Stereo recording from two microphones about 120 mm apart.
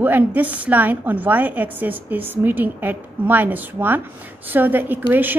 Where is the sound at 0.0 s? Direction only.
15° right (ahead or behind).